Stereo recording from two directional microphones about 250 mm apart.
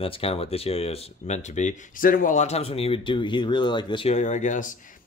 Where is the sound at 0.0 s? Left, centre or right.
Left.